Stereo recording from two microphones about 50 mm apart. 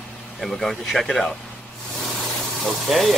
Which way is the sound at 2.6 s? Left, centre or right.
Centre.